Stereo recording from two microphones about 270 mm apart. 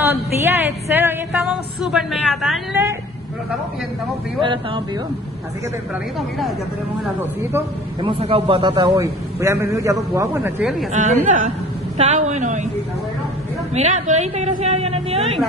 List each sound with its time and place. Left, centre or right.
0.0 s a man's voice: centre
4.4 s a man's voice: centre
7.2 s a man's voice: centre
10.9 s a man's voice: right
13.7 s a man's voice: right